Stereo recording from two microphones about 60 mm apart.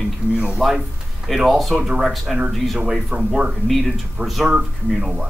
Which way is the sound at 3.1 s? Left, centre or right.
Centre.